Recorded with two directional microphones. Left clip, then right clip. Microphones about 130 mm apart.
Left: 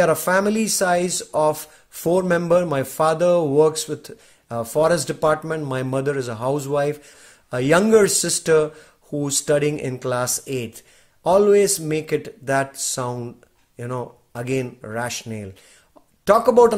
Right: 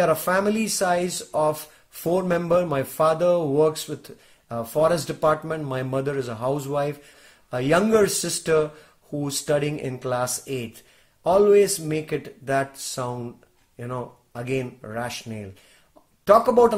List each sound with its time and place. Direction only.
0.0 s speech: 30° left (ahead or behind)